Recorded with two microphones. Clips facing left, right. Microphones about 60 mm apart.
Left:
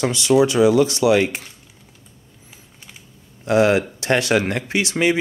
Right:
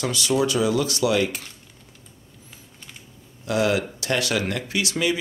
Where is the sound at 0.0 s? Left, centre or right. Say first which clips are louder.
Left 6 dB; left.